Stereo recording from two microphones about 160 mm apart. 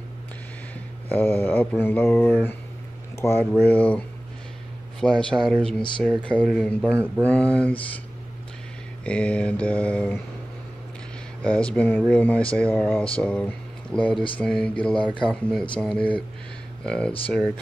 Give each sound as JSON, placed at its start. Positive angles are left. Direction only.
{"t": 1.0, "sound": "speech", "side_deg": 10}
{"t": 5.0, "sound": "speech", "side_deg": 5}
{"t": 9.0, "sound": "speech", "side_deg": 5}
{"t": 11.4, "sound": "speech", "side_deg": 5}